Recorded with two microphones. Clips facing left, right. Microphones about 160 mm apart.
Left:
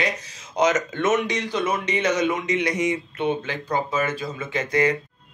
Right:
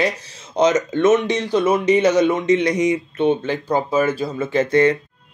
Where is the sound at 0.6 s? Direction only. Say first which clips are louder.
Right 5 dB; 20° right (ahead or behind).